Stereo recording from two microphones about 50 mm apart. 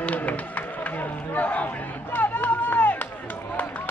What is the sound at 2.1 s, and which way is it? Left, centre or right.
Run, left.